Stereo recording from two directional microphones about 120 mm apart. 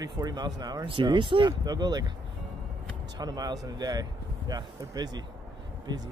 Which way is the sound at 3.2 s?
35° right (ahead or behind).